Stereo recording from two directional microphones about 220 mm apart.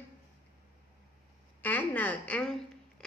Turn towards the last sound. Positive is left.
turn(degrees=5)  # may be behind; listen again after turning